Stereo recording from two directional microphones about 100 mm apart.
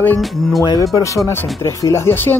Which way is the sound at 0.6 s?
40° left (ahead or behind).